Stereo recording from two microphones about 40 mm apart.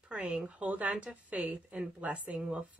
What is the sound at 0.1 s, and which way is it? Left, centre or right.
Speech, right.